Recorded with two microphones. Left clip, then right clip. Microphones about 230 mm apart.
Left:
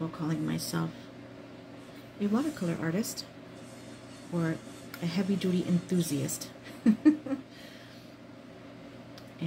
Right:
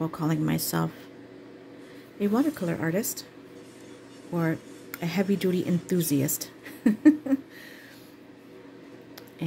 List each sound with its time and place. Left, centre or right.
0.1 s speech: right
2.1 s speech: right
4.4 s speech: right